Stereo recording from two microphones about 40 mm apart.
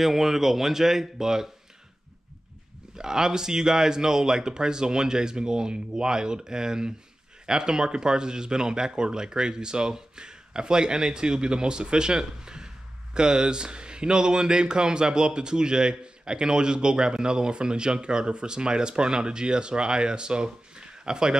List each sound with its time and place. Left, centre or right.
0.0 s speech: centre
3.0 s speech: centre